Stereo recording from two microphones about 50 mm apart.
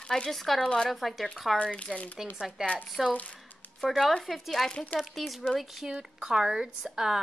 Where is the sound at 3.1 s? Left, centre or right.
Left.